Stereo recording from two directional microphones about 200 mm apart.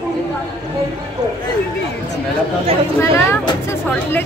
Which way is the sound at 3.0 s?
15° left (ahead or behind).